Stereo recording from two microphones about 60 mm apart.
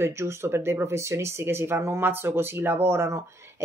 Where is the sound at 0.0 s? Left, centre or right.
Right.